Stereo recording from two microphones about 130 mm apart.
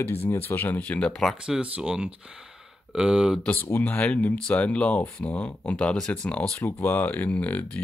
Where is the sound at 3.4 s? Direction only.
15° left (ahead or behind).